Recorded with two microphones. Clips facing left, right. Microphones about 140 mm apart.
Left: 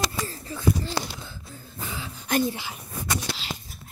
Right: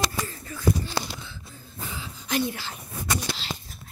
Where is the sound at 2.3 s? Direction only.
55° left (ahead or behind).